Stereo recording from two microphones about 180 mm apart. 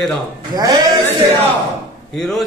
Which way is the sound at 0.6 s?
20° right (ahead or behind).